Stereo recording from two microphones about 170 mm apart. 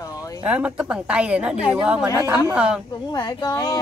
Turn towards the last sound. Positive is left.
turn(degrees=25)  # may be behind; listen again after turning